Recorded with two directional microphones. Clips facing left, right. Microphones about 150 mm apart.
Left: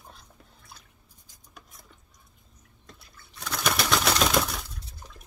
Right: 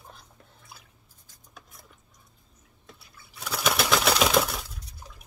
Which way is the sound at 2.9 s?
5° right (ahead or behind).